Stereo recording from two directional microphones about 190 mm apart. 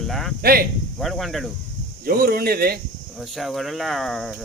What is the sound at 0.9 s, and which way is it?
Speech, centre (ahead or behind).